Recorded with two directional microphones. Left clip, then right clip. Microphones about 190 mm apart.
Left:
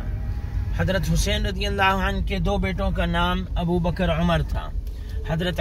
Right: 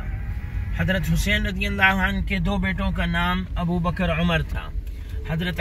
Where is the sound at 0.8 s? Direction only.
55° left (ahead or behind).